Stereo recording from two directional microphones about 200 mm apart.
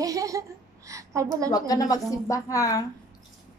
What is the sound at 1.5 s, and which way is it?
A woman's voice, 20° left (ahead or behind).